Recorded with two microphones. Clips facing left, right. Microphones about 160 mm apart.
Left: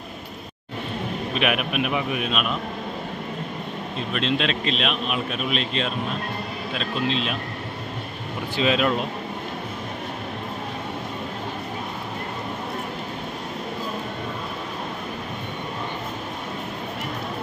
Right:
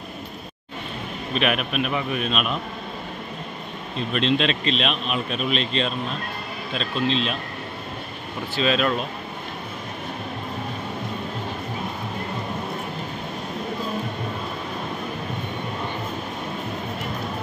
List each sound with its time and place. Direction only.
1.3 s a man's voice: 10° left (ahead or behind)
4.1 s a man's voice: 5° left (ahead or behind)
8.5 s a man's voice: 15° left (ahead or behind)